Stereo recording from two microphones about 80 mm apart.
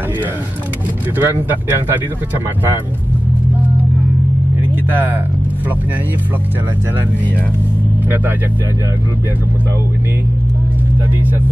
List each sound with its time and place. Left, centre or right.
1.1 s speech: right
4.8 s speech: right